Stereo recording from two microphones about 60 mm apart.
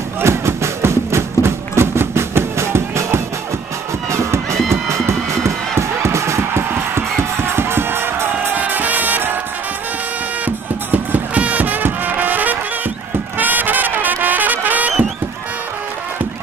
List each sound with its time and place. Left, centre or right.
0.2 s a sound: right
4.1 s music: right
10.4 s music: right